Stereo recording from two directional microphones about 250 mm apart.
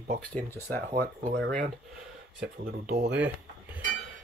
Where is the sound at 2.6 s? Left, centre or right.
Right.